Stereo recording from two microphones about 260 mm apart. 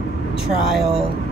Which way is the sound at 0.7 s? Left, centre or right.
Centre.